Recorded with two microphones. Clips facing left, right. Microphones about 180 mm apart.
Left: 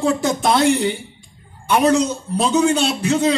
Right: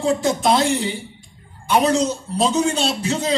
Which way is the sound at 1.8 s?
60° left (ahead or behind).